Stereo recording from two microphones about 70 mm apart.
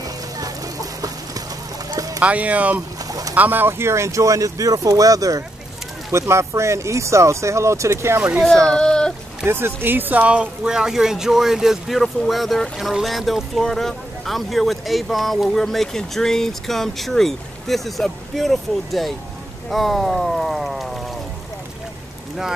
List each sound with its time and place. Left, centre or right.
0.4 s a sound: right
1.9 s rowboat: right
2.1 s speech: centre
3.1 s boat: right
3.3 s speech: right
6.1 s speech: right
8.6 s speech: centre
9.5 s speech: right; by 20.9 s centre